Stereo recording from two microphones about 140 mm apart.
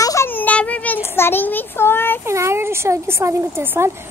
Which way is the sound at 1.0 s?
15° left (ahead or behind).